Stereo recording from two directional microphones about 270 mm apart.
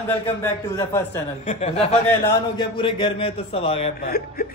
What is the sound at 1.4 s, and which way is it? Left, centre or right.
A man's voice, left.